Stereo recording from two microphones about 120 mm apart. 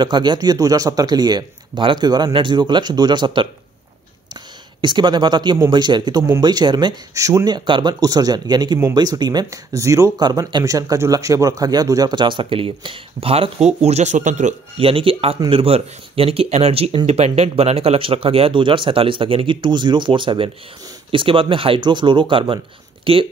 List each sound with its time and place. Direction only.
0.0 s speech: 40° right (ahead or behind)
4.8 s speech: 40° right (ahead or behind); by 14.5 s 90° right
14.8 s speech: 50° right (ahead or behind)